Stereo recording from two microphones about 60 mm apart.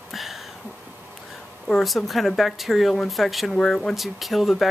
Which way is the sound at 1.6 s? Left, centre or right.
Centre.